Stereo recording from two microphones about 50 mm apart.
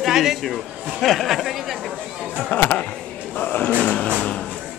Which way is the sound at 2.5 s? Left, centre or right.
Left.